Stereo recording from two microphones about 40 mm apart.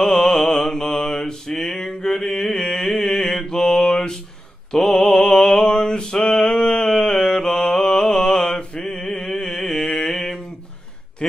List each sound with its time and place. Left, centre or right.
0.0 s mantra: centre
1.6 s male singing: centre
2.0 s mantra: centre
3.7 s a sound: centre
4.7 s mantra: centre
5.3 s a sound: centre